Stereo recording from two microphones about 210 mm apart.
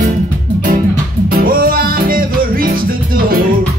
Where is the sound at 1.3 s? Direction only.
45° right (ahead or behind).